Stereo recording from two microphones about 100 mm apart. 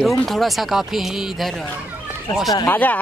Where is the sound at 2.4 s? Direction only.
35° left (ahead or behind).